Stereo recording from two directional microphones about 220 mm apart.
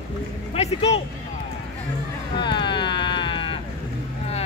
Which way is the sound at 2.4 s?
20° left (ahead or behind).